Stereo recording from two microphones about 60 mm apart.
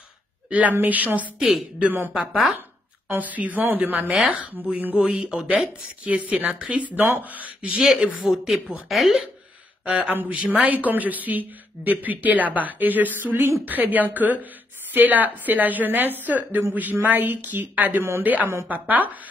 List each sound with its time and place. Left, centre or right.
0.5 s a woman's voice: right
1.4 s a woman's voice: centre
3.1 s a woman's voice: right
7.0 s a woman's voice: right
8.2 s a woman's voice: centre
9.8 s a woman's voice: centre